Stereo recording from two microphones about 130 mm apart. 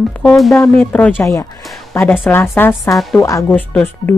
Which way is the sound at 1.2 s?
25° left (ahead or behind).